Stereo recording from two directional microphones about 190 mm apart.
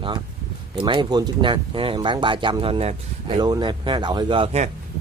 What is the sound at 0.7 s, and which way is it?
Speech, 25° right (ahead or behind).